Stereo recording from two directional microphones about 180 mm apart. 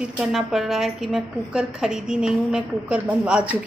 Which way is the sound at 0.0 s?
5° right (ahead or behind).